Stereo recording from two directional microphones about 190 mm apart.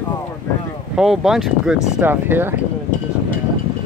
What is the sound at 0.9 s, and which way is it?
Speech, centre (ahead or behind).